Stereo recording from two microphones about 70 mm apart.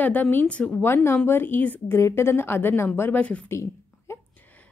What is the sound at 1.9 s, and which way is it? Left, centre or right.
A woman's voice, left.